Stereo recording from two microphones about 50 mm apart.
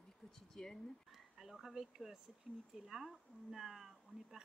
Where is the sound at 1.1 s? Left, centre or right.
Centre.